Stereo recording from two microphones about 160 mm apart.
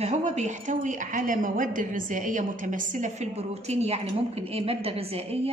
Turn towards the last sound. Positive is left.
turn(degrees=-40)  # may be behind; listen again after turning